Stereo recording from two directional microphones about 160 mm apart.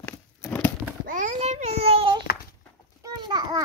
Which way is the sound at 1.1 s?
50° right (ahead or behind).